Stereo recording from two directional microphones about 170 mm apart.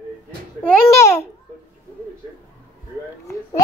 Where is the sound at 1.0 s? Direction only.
15° left (ahead or behind).